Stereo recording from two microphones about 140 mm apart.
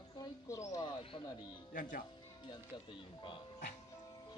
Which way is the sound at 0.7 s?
35° left (ahead or behind).